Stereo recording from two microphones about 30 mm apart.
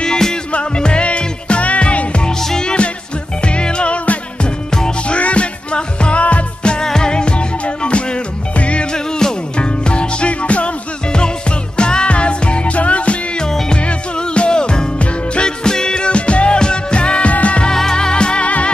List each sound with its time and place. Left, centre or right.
0.5 s music: left
3.9 s music: left
5.0 s music: left
6.8 s music: left
9.2 s music: centre
9.6 s music: left
11.1 s music: left
13.7 s music: left
16.5 s music: left
17.3 s music: left
17.9 s music: left